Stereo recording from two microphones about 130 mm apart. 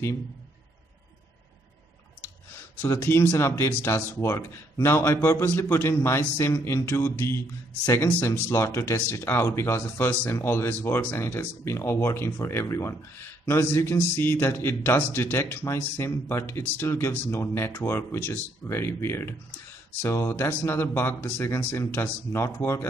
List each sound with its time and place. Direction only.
2.8 s speech: 20° left (ahead or behind)